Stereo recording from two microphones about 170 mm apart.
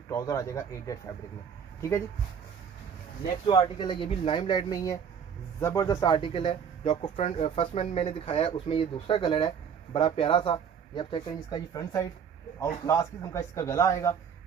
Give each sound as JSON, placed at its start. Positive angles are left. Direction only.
{"t": 0.1, "sound": "speech", "side_deg": 20}
{"t": 3.3, "sound": "speech", "side_deg": 25}